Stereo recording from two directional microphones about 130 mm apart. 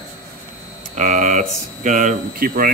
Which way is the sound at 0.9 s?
70° right (ahead or behind).